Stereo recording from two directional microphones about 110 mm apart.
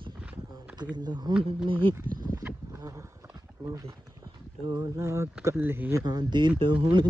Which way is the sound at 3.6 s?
35° right (ahead or behind).